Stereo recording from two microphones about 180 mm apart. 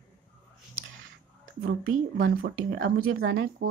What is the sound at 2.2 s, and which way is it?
Speech, 55° right (ahead or behind).